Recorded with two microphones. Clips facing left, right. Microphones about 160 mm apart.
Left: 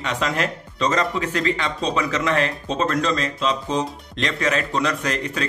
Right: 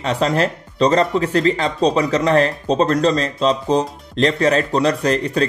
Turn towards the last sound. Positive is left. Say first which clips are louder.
# right 7 dB
turn(degrees=-35)  # may be behind; listen again after turning